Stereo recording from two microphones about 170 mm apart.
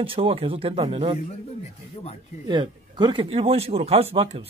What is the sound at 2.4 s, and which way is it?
Speech, 25° right (ahead or behind).